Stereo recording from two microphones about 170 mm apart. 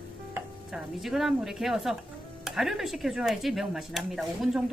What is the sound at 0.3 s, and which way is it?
Speech, 5° right (ahead or behind).